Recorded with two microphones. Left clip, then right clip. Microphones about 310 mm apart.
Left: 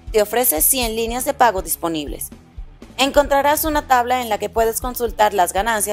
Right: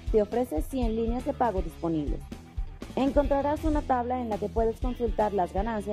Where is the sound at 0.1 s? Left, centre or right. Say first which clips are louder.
Left 9 dB; centre.